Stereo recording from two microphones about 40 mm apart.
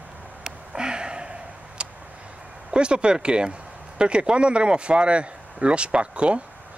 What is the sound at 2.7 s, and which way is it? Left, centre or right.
Speech, right.